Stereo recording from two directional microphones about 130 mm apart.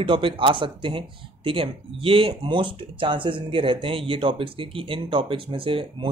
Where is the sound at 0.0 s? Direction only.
40° right (ahead or behind).